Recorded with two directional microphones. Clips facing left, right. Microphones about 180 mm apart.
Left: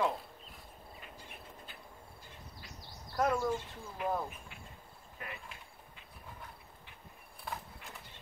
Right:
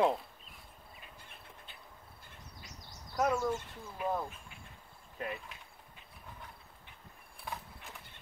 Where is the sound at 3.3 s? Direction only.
10° left (ahead or behind).